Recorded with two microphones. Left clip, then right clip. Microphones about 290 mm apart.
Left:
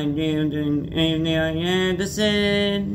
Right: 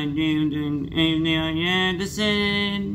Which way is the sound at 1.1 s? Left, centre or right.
Left.